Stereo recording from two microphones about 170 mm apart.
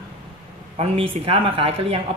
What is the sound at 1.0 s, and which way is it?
Speech, 35° right (ahead or behind).